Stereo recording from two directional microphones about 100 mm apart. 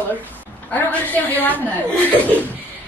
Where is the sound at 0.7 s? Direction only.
15° left (ahead or behind).